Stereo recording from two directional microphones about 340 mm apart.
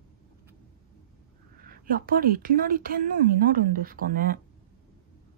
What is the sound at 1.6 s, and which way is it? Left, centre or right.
A woman's voice, right.